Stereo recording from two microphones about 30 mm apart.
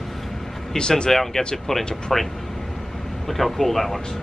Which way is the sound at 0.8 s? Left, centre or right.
Left.